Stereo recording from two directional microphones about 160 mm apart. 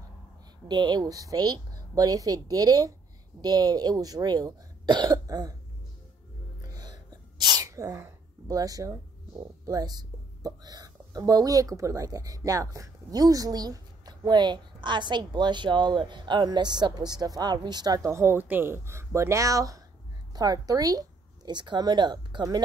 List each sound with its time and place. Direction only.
0.7 s speech: 25° right (ahead or behind)
6.6 s sneeze: 25° right (ahead or behind)
9.4 s speech: 25° right (ahead or behind)